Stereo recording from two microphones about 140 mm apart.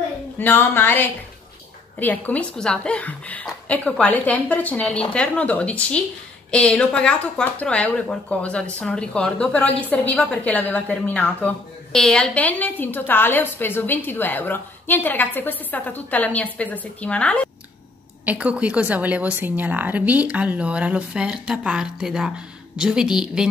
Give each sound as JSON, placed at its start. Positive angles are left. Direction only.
{"t": 0.4, "sound": "a woman's voice", "side_deg": 15}
{"t": 18.2, "sound": "a woman's voice", "side_deg": -10}